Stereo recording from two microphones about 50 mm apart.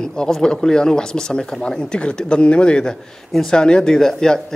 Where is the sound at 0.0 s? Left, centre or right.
Centre.